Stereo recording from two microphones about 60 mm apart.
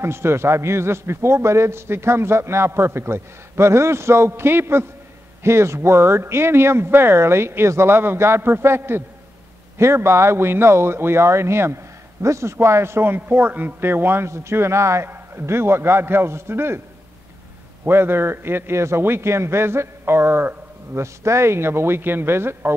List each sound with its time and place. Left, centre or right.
0.0 s a man's voice: right
15.0 s a man's voice: right
17.8 s a man's voice: right
21.0 s a man's voice: right